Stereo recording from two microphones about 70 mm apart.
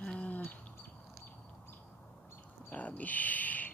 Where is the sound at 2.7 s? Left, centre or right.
Left.